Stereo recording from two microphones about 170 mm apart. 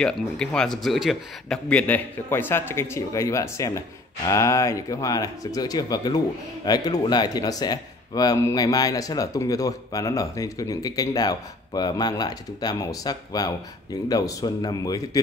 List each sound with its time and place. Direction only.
0.0 s speech: 5° left (ahead or behind); by 15.0 s 25° left (ahead or behind)